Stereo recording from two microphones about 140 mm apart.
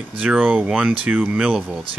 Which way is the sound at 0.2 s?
10° right (ahead or behind).